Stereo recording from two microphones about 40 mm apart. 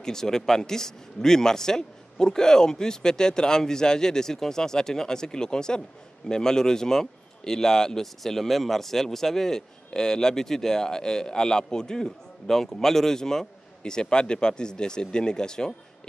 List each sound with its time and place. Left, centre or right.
0.0 s speech: centre